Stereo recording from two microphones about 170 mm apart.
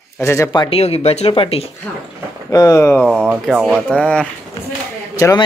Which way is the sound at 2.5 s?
20° left (ahead or behind).